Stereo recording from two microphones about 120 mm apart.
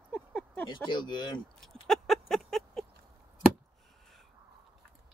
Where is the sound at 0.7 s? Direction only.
40° left (ahead or behind).